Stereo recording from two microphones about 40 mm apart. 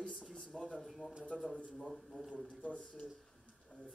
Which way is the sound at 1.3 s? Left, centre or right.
Centre.